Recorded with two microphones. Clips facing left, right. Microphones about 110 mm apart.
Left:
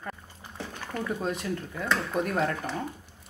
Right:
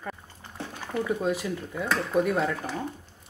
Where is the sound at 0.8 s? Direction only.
15° right (ahead or behind).